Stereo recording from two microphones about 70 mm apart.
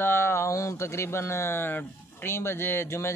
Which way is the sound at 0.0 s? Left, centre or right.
Left.